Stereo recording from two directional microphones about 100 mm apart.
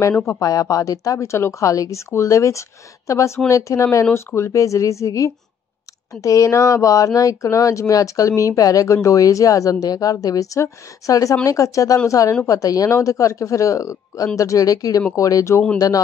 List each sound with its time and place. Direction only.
0.2 s speech: 35° left (ahead or behind)